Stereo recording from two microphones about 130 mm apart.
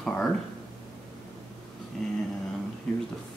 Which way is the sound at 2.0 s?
5° left (ahead or behind).